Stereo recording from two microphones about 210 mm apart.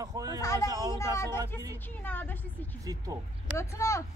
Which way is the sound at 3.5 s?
15° left (ahead or behind).